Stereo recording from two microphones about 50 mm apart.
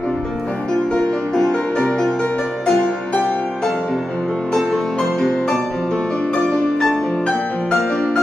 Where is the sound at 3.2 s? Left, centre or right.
Centre.